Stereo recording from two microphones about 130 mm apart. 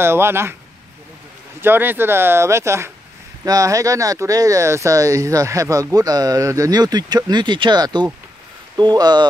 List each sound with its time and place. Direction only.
0.0 s speech: 20° right (ahead or behind)
1.6 s speech: 15° right (ahead or behind); by 9.3 s 30° right (ahead or behind)